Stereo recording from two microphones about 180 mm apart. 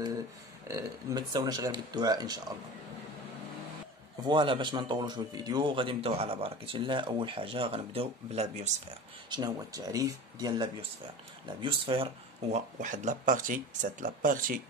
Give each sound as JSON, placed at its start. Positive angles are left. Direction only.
{"t": 0.7, "sound": "a man's voice", "side_deg": -20}
{"t": 4.2, "sound": "a man's voice", "side_deg": -25}
{"t": 9.3, "sound": "a man's voice", "side_deg": -20}